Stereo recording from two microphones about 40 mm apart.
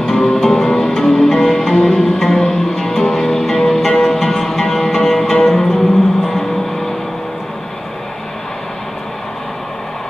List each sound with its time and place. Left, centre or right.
0.0 s music: centre